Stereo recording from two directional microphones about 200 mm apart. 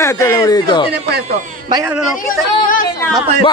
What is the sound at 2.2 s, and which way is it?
Speech, 40° left (ahead or behind).